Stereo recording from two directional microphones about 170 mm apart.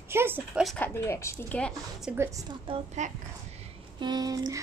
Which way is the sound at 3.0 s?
45° right (ahead or behind).